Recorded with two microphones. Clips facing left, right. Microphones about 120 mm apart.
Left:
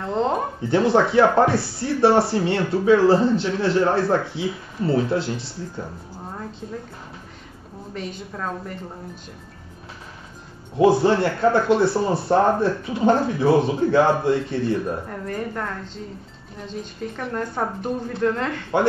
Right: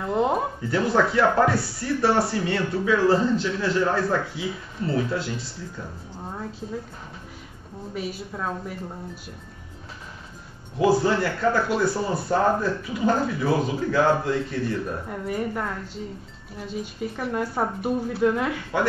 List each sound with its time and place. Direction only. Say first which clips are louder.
0.0 s a sound: even; 10° right (ahead or behind)
0.6 s speech: left 7 dB; 25° left (ahead or behind)
7.9 s a woman's voice: even; 5° right (ahead or behind)
10.8 s speech: left 4 dB; 25° left (ahead or behind)
15.0 s speech: right 1 dB; 10° right (ahead or behind)